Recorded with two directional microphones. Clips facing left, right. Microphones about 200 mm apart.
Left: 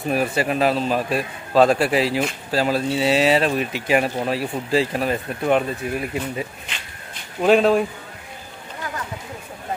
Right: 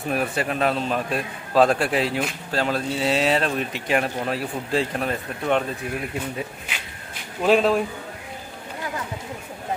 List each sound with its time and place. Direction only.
0.1 s a man's voice: 5° left (ahead or behind)
7.4 s a man's voice: centre (ahead or behind)